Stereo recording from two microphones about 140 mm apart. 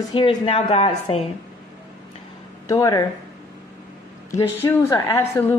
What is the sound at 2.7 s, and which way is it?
Speech, 25° left (ahead or behind).